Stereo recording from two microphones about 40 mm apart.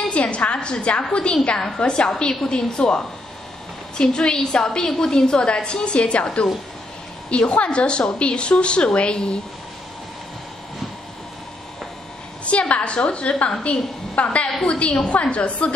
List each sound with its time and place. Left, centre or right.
0.1 s a woman's voice: left
12.4 s a woman's voice: left